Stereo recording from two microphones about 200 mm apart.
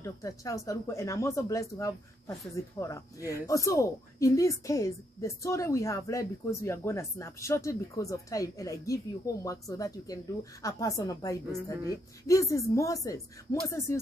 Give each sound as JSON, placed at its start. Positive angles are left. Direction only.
{"t": 0.0, "sound": "speech", "side_deg": 15}